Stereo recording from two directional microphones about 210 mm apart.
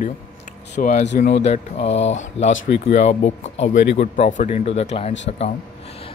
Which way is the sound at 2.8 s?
35° left (ahead or behind).